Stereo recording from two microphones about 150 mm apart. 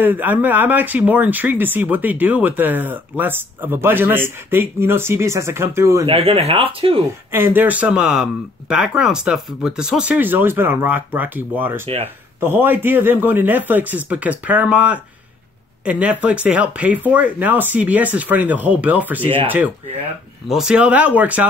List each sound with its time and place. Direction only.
0.0 s speech: 10° right (ahead or behind)
6.0 s speech: 40° right (ahead or behind)
7.3 s speech: 15° right (ahead or behind)